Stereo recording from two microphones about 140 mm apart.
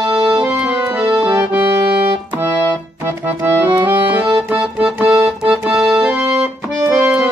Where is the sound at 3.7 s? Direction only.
35° right (ahead or behind).